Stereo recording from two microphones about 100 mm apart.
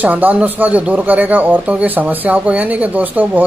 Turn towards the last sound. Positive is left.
turn(degrees=-15)  # may be behind; listen again after turning